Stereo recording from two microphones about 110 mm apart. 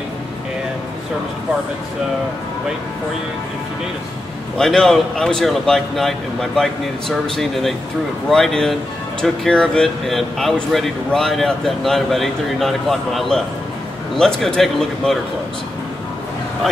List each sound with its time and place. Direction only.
4.6 s speech: 5° left (ahead or behind)